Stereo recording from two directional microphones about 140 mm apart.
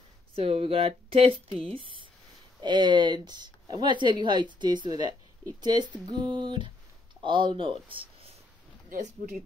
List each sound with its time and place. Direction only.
0.4 s speech: 45° right (ahead or behind)
8.9 s speech: 70° right (ahead or behind)